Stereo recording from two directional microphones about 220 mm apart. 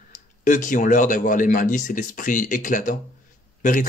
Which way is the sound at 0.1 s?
35° left (ahead or behind).